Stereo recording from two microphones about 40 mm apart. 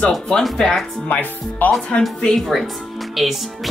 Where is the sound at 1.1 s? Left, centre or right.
Left.